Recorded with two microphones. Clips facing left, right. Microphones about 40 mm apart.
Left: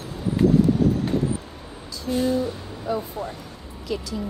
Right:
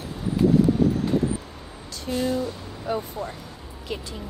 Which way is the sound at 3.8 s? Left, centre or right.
Right.